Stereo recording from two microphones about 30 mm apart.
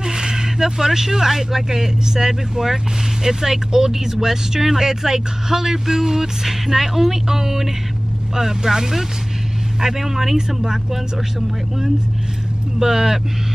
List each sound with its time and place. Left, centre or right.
0.0 s speech: right
12.7 s speech: centre